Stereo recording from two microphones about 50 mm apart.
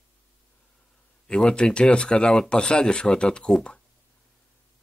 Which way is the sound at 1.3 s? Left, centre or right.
Centre.